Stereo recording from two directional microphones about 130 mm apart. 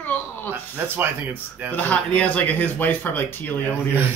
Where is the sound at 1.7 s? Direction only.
10° left (ahead or behind).